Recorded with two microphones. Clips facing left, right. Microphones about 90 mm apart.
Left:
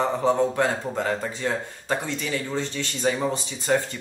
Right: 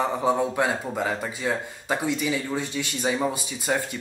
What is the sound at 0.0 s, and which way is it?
A man's voice, 10° right (ahead or behind).